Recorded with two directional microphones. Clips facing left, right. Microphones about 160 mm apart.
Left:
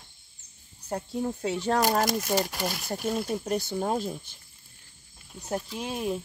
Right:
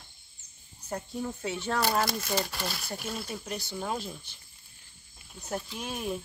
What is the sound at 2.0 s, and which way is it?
Speech, 15° left (ahead or behind).